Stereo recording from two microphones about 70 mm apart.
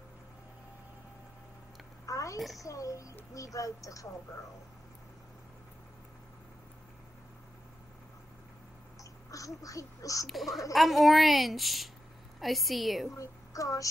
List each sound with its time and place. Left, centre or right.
2.0 s a sound: left
2.3 s a woman's voice: centre
2.6 s duck: left
9.3 s duck: left
10.2 s a woman's voice: centre
13.2 s a woman's voice: left